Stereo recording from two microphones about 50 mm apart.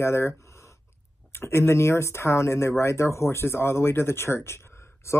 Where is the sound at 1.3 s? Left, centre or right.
Left.